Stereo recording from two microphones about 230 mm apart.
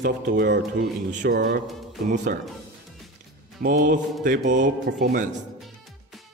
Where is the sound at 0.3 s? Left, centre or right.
Right.